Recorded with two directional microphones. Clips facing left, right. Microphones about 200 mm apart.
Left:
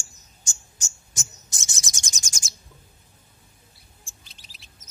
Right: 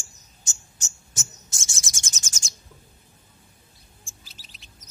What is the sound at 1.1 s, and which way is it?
Bird, 15° left (ahead or behind).